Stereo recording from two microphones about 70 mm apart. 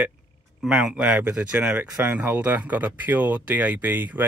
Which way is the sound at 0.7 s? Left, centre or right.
Centre.